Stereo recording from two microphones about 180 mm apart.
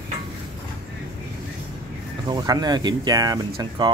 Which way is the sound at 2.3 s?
20° right (ahead or behind).